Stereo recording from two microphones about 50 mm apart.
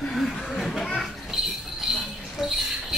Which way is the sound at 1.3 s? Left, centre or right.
Centre.